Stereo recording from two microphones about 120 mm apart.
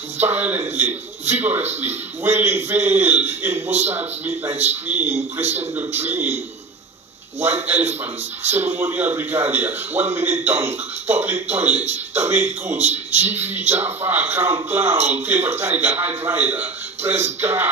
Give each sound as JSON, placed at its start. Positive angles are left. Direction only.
{"t": 0.2, "sound": "a man's voice", "side_deg": -15}
{"t": 5.4, "sound": "a man's voice", "side_deg": -65}
{"t": 5.8, "sound": "a man's voice", "side_deg": -15}
{"t": 7.6, "sound": "a man's voice", "side_deg": -15}
{"t": 11.8, "sound": "speech", "side_deg": -65}
{"t": 12.2, "sound": "a man's voice", "side_deg": -20}
{"t": 13.7, "sound": "a man's voice", "side_deg": -20}